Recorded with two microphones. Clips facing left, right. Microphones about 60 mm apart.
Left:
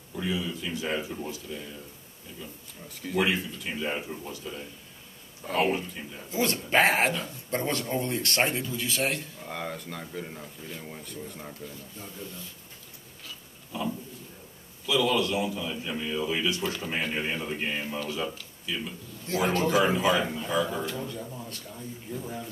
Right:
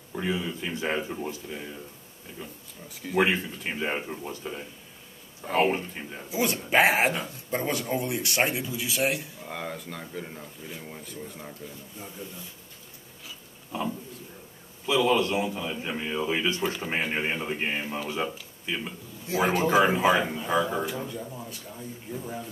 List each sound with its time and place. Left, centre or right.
0.1 s speech: right
2.9 s speech: centre
3.2 s speech: right
5.4 s speech: centre
5.7 s speech: right
6.3 s speech: centre
13.7 s speech: right
19.2 s speech: centre
20.8 s speech: centre